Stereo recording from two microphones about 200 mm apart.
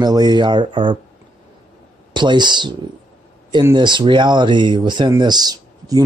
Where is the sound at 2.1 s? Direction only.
20° right (ahead or behind).